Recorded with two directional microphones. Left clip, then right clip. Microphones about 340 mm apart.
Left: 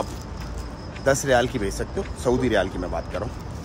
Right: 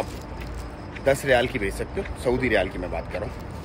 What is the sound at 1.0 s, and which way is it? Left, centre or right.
A man's voice, centre.